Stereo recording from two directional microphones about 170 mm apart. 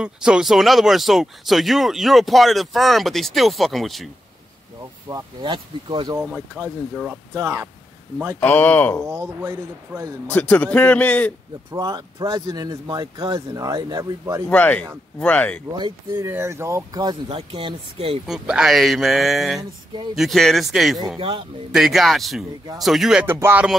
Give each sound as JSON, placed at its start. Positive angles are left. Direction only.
{"t": 0.0, "sound": "speech", "side_deg": -5}
{"t": 5.1, "sound": "speech", "side_deg": -30}
{"t": 6.1, "sound": "speech", "side_deg": -10}
{"t": 8.4, "sound": "a man's voice", "side_deg": 10}
{"t": 9.1, "sound": "speech", "side_deg": -15}
{"t": 10.2, "sound": "a man's voice", "side_deg": 5}
{"t": 11.7, "sound": "speech", "side_deg": -25}
{"t": 14.5, "sound": "a man's voice", "side_deg": 10}
{"t": 15.7, "sound": "speech", "side_deg": -25}
{"t": 18.2, "sound": "speech", "side_deg": -5}
{"t": 21.2, "sound": "speech", "side_deg": -30}
{"t": 21.7, "sound": "speech", "side_deg": 0}
{"t": 23.2, "sound": "speech", "side_deg": -15}